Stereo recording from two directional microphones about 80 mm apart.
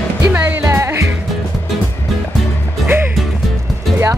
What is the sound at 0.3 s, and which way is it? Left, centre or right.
Music, right.